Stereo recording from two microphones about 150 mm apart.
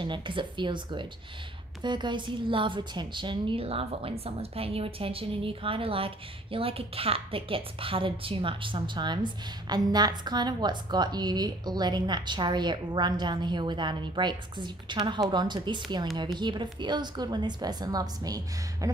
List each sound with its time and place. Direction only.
0.0 s a woman's voice: 30° right (ahead or behind)